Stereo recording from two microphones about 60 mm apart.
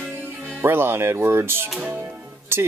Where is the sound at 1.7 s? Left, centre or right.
Right.